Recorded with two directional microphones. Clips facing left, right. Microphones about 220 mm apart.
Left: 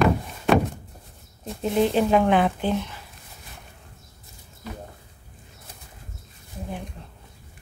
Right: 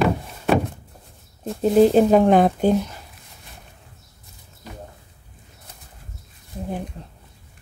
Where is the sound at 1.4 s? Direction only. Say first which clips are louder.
Right 7 dB; 40° right (ahead or behind).